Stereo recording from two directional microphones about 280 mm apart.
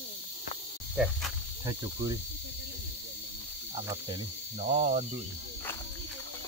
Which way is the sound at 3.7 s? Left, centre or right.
Centre.